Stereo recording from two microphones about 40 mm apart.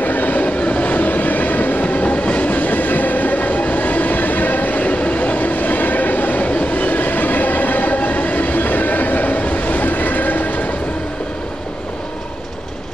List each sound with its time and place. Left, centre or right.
0.0 s train: left